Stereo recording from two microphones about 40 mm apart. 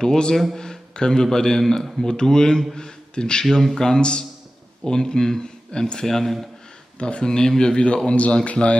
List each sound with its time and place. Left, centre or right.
0.0 s a man's voice: centre
6.0 s speech: centre
7.0 s speech: left
7.2 s a man's voice: centre